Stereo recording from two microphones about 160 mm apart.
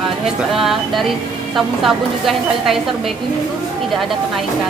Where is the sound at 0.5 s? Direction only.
Centre (ahead or behind).